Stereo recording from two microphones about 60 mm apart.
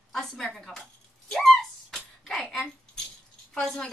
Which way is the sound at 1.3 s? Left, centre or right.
Centre.